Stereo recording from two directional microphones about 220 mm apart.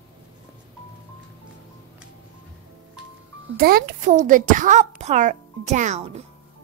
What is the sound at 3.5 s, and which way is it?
A woman's voice, 40° right (ahead or behind).